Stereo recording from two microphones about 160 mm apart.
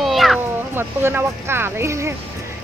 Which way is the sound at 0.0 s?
Centre (ahead or behind).